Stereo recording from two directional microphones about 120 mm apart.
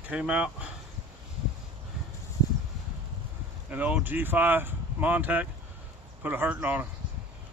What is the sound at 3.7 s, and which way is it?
Speech, 15° right (ahead or behind).